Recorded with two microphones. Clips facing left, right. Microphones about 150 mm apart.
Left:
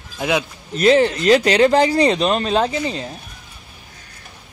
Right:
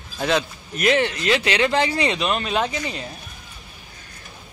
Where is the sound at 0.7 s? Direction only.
30° left (ahead or behind).